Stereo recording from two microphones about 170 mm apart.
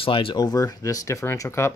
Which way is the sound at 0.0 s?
30° left (ahead or behind).